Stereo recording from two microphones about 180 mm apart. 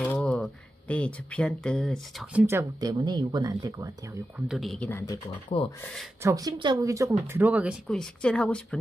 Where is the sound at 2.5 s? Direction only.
20° right (ahead or behind).